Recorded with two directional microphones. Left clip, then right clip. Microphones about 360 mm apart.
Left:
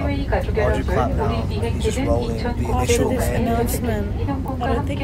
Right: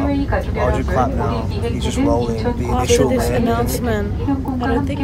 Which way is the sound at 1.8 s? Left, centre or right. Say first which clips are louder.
Right 4 dB; right.